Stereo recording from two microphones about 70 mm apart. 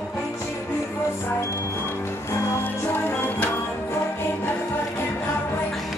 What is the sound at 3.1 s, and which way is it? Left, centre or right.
Music, left.